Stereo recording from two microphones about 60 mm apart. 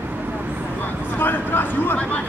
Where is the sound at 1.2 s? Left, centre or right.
Left.